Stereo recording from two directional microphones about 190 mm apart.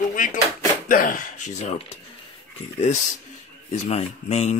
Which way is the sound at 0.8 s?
45° left (ahead or behind).